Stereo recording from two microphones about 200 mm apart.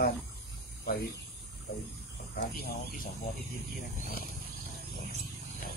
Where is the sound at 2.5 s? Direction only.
50° left (ahead or behind).